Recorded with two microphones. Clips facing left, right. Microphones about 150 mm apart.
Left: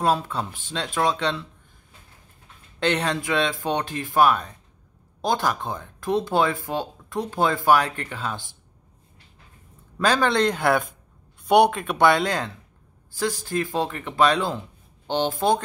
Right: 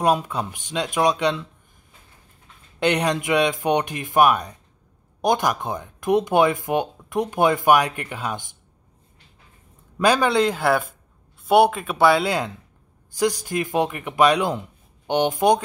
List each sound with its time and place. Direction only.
0.0 s speech: 15° right (ahead or behind)
2.8 s speech: 15° right (ahead or behind)
9.9 s speech: 10° right (ahead or behind)